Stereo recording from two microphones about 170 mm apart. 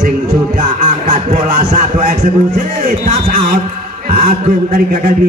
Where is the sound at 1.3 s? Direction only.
50° right (ahead or behind).